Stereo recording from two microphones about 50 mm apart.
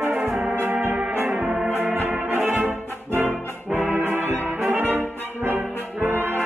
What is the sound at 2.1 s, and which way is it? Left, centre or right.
Brass instrument, right.